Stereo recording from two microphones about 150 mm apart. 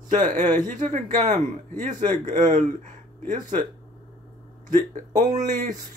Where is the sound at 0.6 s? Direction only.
60° right (ahead or behind).